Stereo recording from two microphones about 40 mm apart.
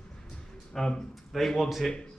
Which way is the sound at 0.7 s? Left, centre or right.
Centre.